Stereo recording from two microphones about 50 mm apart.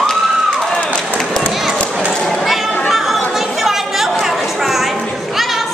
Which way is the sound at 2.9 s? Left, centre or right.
Centre.